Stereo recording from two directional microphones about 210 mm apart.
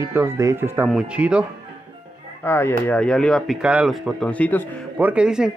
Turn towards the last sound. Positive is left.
turn(degrees=-5)  # may be behind; listen again after turning